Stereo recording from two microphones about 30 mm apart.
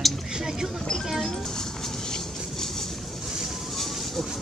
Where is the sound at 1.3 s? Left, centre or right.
Centre.